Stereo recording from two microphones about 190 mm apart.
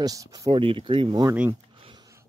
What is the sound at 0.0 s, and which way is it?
Speech, 20° right (ahead or behind).